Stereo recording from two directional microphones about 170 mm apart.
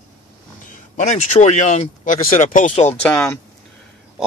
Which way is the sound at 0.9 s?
45° left (ahead or behind).